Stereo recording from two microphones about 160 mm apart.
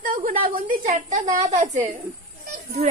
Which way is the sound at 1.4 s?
45° right (ahead or behind).